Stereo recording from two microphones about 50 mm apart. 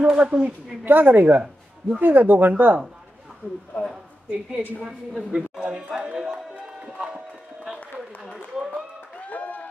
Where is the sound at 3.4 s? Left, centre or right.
Left.